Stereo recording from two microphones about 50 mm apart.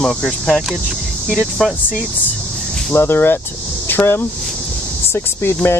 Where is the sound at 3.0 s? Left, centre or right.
Left.